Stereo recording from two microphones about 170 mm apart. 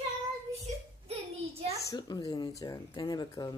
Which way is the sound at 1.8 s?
25° left (ahead or behind).